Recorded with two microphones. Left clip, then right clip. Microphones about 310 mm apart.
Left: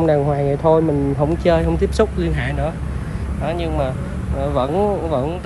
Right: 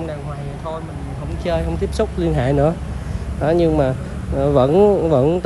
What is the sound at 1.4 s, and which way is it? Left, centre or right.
Speech, centre.